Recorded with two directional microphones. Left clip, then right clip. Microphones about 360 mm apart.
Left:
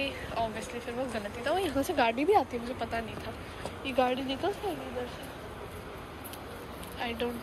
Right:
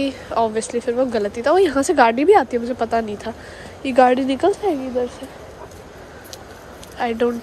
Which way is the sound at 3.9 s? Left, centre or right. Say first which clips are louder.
Right 15 dB; right.